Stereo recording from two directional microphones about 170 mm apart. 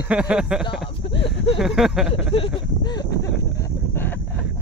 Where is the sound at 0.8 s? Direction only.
30° left (ahead or behind).